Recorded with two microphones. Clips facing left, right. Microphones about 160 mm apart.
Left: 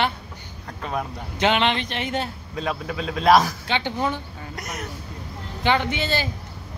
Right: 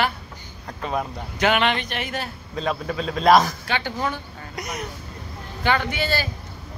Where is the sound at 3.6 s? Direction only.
20° left (ahead or behind).